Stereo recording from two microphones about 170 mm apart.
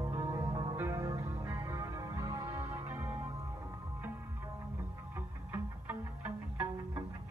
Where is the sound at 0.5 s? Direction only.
30° right (ahead or behind).